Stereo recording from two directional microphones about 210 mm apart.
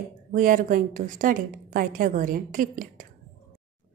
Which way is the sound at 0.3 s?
40° right (ahead or behind).